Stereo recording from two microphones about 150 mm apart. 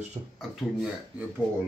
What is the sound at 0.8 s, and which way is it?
Speech, 10° right (ahead or behind).